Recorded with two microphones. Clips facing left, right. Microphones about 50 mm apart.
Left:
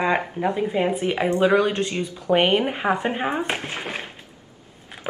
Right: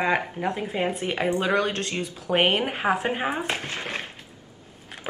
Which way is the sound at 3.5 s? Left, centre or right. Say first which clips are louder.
Left 2 dB; centre.